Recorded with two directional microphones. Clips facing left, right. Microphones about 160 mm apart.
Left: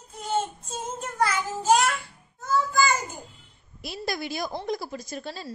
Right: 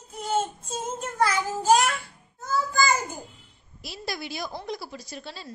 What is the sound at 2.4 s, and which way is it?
Child singing, 35° right (ahead or behind).